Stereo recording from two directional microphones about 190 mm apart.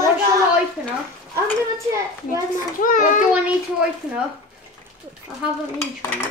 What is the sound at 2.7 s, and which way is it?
Speech, 45° left (ahead or behind).